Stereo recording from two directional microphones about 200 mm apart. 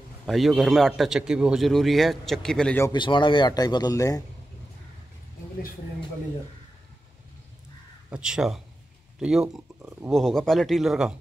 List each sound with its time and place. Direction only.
0.3 s speech: centre (ahead or behind)
2.9 s speech: 25° left (ahead or behind)
8.1 s speech: 5° right (ahead or behind)
9.8 s a sound: 15° right (ahead or behind)
10.1 s speech: centre (ahead or behind)